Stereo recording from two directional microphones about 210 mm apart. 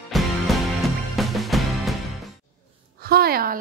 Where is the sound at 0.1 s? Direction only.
Centre (ahead or behind).